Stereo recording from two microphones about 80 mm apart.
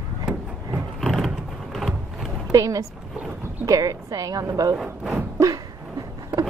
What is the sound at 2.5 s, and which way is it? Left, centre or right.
Speech, right.